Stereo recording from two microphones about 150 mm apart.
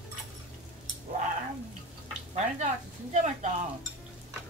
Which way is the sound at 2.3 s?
50° right (ahead or behind).